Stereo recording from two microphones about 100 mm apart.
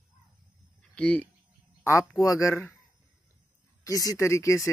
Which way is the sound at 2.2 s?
35° left (ahead or behind).